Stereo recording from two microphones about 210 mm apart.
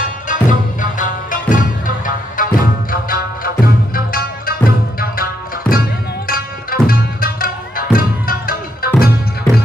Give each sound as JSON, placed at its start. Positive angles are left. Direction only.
{"t": 0.3, "sound": "music", "side_deg": 40}
{"t": 6.2, "sound": "tabla", "side_deg": 45}